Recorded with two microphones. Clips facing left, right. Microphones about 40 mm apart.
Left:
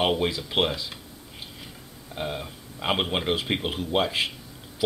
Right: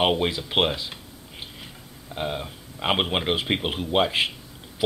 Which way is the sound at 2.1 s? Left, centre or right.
Centre.